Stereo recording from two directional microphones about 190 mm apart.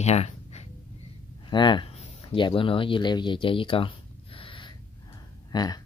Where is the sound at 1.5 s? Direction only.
25° left (ahead or behind).